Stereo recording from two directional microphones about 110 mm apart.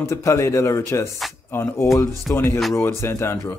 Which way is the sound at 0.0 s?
25° left (ahead or behind).